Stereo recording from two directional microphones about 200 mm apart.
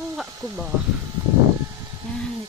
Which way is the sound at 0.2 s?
Centre (ahead or behind).